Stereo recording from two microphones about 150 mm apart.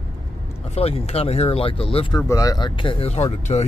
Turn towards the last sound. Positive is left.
turn(degrees=45)  # may be behind; listen again after turning